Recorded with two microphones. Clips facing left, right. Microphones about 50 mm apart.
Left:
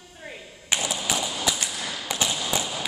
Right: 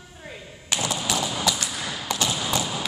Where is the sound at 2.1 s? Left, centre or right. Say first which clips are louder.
Right 1 dB; centre.